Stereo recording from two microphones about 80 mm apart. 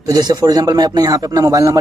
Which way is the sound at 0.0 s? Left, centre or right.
Right.